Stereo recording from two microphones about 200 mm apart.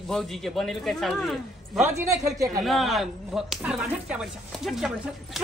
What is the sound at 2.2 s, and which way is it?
Speech, 15° right (ahead or behind).